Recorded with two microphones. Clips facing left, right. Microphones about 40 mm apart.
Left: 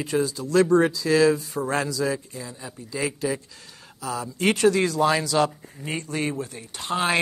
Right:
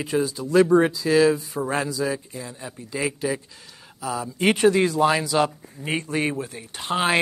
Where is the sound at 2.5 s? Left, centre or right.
Right.